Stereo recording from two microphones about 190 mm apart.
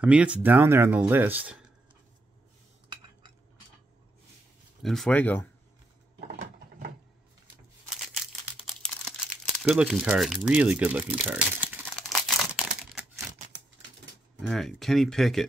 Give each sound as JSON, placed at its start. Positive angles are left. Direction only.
{"t": 0.0, "sound": "speech", "side_deg": -5}
{"t": 4.8, "sound": "speech", "side_deg": 0}
{"t": 6.2, "sound": "a sound", "side_deg": -50}
{"t": 8.5, "sound": "crumpling", "side_deg": 5}
{"t": 14.4, "sound": "speech", "side_deg": 0}